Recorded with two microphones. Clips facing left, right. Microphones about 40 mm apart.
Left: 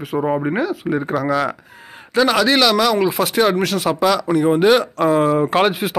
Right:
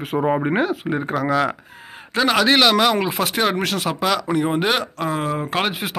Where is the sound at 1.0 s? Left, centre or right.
Centre.